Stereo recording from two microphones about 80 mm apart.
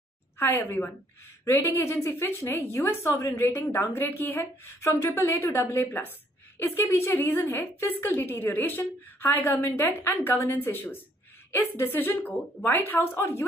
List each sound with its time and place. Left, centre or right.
0.4 s a woman's voice: left
1.4 s a woman's voice: left
4.4 s a woman's voice: left
7.4 s a woman's voice: left